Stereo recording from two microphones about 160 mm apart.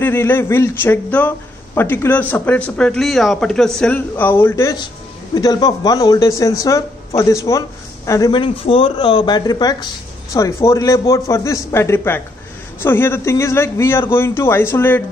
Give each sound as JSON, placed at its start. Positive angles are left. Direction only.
{"t": 0.0, "sound": "a man's voice", "side_deg": 15}